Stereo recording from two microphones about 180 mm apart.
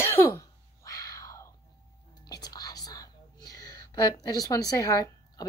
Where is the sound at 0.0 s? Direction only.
15° left (ahead or behind).